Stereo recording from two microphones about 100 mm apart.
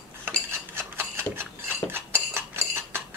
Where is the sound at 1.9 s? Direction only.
25° right (ahead or behind).